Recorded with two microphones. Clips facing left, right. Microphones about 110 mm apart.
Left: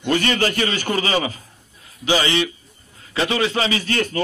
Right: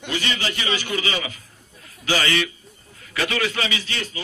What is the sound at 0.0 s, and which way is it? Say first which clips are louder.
A man's voice: left 7 dB; 50° left (ahead or behind).